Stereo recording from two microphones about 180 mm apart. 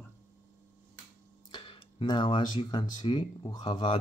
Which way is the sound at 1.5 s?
30° left (ahead or behind).